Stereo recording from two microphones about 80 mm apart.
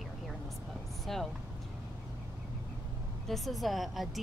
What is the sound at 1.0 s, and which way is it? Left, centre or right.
Speech, centre.